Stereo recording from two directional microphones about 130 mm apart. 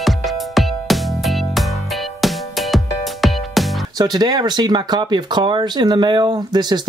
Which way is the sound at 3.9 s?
30° right (ahead or behind).